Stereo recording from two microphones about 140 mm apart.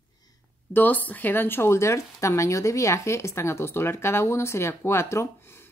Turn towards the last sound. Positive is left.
turn(degrees=20)  # may be behind; listen again after turning